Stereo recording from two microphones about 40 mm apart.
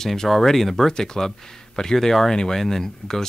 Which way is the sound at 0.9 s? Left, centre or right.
Centre.